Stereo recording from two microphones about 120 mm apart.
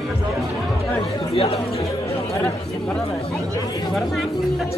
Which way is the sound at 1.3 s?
55° left (ahead or behind).